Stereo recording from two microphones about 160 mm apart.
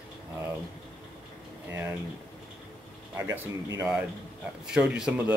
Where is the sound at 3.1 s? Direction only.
20° right (ahead or behind).